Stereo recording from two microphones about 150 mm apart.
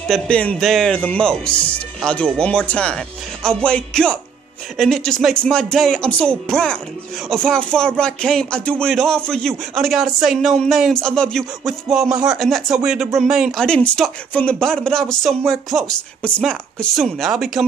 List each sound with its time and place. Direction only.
0.1 s a man's voice: 10° left (ahead or behind)